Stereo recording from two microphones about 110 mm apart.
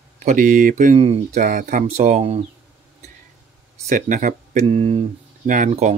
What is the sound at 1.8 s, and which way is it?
Speech, 90° right.